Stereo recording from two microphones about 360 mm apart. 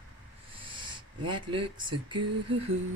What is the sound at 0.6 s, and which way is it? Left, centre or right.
Speech, centre.